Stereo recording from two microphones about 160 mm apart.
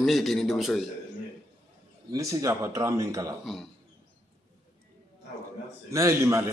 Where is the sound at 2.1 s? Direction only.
20° right (ahead or behind).